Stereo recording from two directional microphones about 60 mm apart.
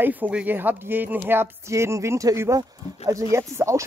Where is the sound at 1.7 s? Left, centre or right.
Right.